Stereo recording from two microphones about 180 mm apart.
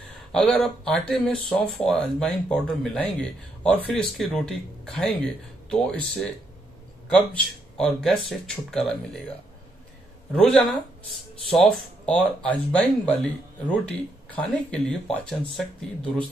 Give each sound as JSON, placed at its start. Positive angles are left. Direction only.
{"t": 0.3, "sound": "speech", "side_deg": 5}
{"t": 7.7, "sound": "speech", "side_deg": 5}
{"t": 10.3, "sound": "speech", "side_deg": 5}